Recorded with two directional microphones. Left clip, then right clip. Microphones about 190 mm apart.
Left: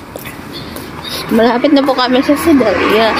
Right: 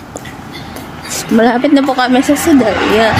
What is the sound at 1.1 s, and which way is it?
Speech, 10° right (ahead or behind).